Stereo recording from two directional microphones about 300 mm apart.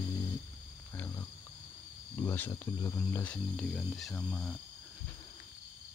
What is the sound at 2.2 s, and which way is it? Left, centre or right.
Speech, centre.